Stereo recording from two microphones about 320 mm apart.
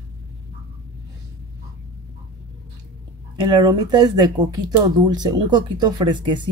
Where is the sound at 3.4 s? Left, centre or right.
Centre.